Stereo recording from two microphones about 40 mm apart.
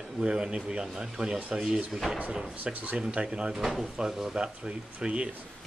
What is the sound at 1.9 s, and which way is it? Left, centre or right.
Speech, centre.